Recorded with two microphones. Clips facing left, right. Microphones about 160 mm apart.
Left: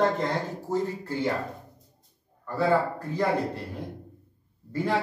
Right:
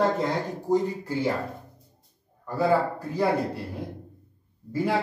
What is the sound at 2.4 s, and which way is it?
Speech, 10° right (ahead or behind).